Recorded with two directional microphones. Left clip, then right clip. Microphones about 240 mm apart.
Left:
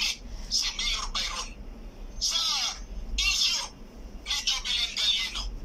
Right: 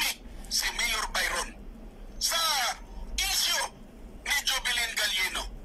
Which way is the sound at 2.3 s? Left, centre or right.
Right.